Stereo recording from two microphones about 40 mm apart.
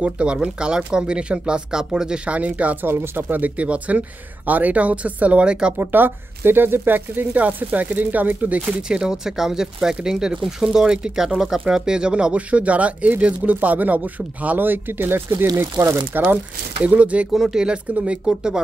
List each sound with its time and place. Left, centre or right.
0.0 s speech: right
2.2 s speech: right
2.8 s speech: right
5.8 s speech: right
7.3 s speech: right
8.8 s speech: centre
11.2 s speech: centre; by 14.6 s right
14.6 s speech: right
16.8 s speech: right
17.3 s speech: centre
17.9 s speech: right
18.2 s speech: centre